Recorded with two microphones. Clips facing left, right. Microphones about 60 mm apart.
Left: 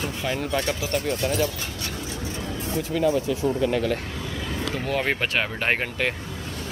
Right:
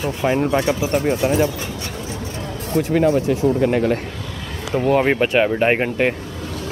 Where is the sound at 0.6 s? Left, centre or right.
Right.